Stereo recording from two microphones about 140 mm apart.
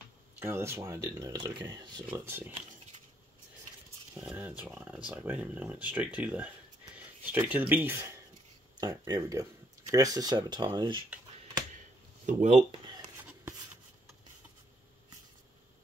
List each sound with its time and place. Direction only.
0.4 s speech: 15° right (ahead or behind)
1.3 s speech: 35° right (ahead or behind)
2.0 s speech: 15° right (ahead or behind)
4.2 s speech: 10° right (ahead or behind); by 11.0 s 30° right (ahead or behind)
12.3 s speech: 60° right (ahead or behind)
13.2 s a sound: 10° right (ahead or behind)